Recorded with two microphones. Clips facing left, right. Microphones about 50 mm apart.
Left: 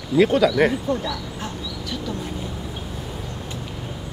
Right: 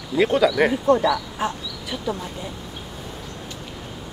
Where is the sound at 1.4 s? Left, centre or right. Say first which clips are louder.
Right 4 dB; centre.